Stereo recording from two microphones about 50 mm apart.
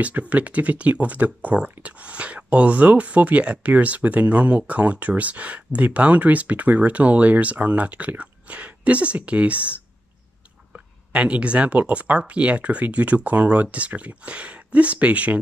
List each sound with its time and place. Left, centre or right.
0.0 s speech: right
11.1 s speech: right